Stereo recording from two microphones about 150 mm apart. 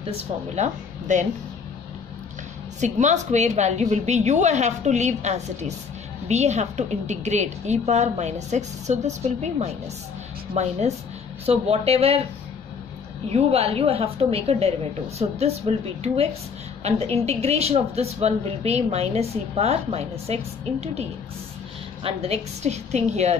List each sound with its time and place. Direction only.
0.6 s speech: 55° right (ahead or behind)
2.8 s a woman's voice: 50° right (ahead or behind)
13.3 s a woman's voice: 40° right (ahead or behind)
22.0 s a woman's voice: 45° right (ahead or behind)